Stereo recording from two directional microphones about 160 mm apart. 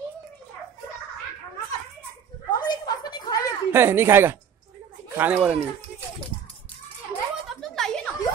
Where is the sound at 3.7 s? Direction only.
15° right (ahead or behind).